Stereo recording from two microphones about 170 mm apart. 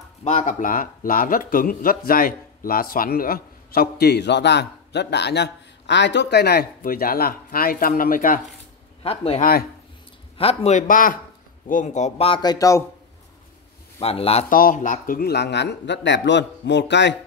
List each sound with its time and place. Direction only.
0.2 s speech: 45° left (ahead or behind)
9.0 s a man's voice: 35° left (ahead or behind)
9.4 s speech: 60° left (ahead or behind)
10.3 s speech: 35° left (ahead or behind)
12.4 s speech: 20° left (ahead or behind)
14.0 s a man's voice: 35° left (ahead or behind)
14.5 s a man's voice: 55° left (ahead or behind); by 17.2 s 90° left